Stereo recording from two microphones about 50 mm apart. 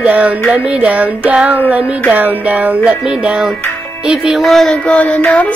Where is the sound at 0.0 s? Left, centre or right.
Right; by 4.4 s centre.